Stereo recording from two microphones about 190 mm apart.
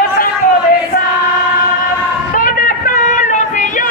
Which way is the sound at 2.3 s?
45° left (ahead or behind).